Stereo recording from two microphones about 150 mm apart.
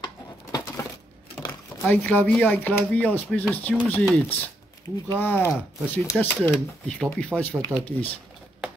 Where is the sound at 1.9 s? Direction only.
10° left (ahead or behind).